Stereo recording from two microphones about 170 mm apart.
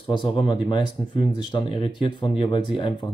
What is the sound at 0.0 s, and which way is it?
Speech, 30° left (ahead or behind).